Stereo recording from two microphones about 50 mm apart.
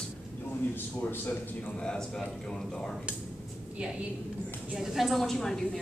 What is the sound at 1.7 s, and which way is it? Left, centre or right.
Speech, centre.